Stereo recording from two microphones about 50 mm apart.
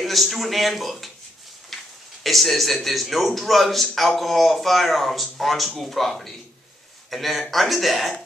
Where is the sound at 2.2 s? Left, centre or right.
Centre.